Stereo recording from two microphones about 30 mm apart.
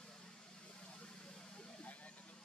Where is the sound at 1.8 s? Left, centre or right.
Left.